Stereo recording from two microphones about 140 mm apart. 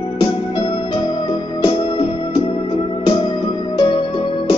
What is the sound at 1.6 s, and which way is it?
Music, 40° left (ahead or behind).